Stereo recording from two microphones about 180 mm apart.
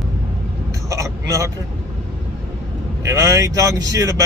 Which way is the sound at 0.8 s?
15° right (ahead or behind).